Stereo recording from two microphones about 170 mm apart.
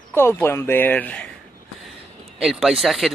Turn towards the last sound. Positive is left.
turn(degrees=0)  # may be behind; listen again after turning